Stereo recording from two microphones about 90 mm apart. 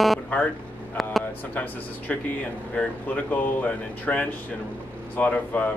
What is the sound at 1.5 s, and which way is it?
Speech, 15° left (ahead or behind).